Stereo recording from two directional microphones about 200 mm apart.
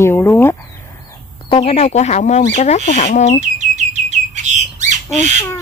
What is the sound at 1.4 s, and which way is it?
Speech, 30° left (ahead or behind).